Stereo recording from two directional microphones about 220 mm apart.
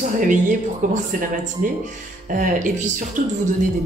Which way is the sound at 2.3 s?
35° right (ahead or behind).